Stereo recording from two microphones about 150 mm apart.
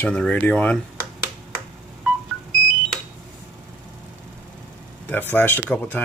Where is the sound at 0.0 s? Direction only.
10° left (ahead or behind).